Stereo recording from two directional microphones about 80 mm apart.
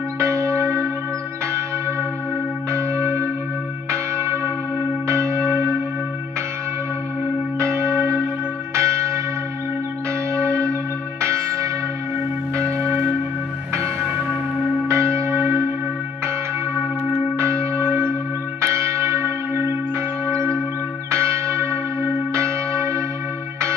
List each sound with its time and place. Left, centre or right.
0.2 s church bell: right
2.7 s church bell: right
5.0 s church bell: right
7.5 s church bell: right
10.3 s church bell: right
14.9 s church bell: right
17.4 s church bell: right